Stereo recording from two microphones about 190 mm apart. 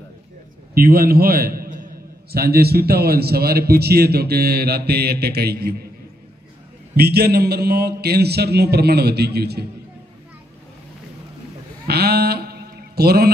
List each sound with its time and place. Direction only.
0.7 s a man's voice: 50° right (ahead or behind)
7.0 s a man's voice: 55° right (ahead or behind)
11.9 s a sound: 55° right (ahead or behind)